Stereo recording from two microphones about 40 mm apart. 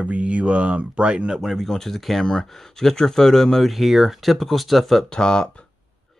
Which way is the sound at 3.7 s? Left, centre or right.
Centre.